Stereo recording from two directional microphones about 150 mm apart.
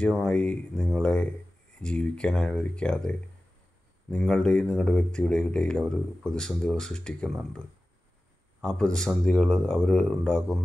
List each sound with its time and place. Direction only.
0.0 s speech: 5° left (ahead or behind)